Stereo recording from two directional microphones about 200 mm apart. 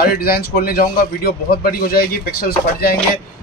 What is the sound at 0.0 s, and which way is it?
A man's voice, 50° left (ahead or behind).